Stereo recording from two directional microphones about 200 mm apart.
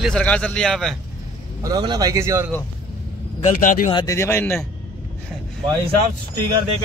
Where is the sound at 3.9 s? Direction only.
25° left (ahead or behind).